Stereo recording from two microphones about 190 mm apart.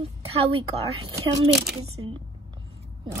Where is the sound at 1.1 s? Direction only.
20° right (ahead or behind).